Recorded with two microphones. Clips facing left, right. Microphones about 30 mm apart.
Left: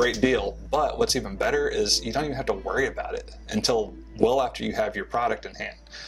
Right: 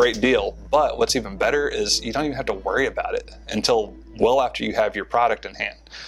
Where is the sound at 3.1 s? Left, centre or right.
Right.